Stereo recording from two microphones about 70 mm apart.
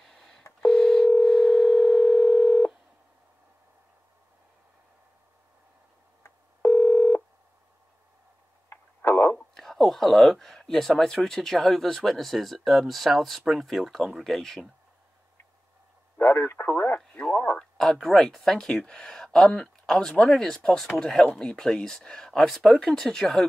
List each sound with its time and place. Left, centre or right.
0.0 s busy signal: centre
0.6 s telephone dialing: centre
1.4 s dial tone: centre
2.1 s telephone dialing: left
6.2 s telephone dialing: left
8.6 s a sound: left
9.4 s speech: centre
16.2 s speech: left
17.2 s speech: centre
17.7 s speech: centre